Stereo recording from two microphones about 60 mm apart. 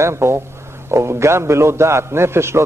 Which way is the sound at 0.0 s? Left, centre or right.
Right.